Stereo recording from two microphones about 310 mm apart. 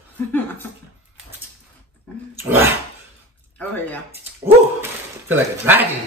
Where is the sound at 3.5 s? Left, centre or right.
Centre.